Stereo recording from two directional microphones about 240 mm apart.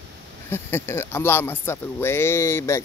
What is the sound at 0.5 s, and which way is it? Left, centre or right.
Speech, centre.